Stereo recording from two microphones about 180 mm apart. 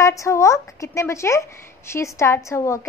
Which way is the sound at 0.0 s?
15° left (ahead or behind).